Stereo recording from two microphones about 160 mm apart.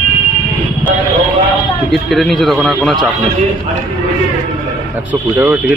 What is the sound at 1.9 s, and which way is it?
Speech, centre (ahead or behind).